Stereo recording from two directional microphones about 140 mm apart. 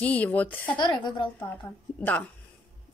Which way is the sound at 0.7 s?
30° left (ahead or behind).